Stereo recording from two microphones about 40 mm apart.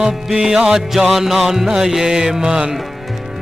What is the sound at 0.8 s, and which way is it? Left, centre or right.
Speech, centre.